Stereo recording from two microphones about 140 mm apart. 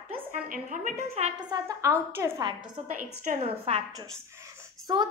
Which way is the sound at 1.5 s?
25° right (ahead or behind).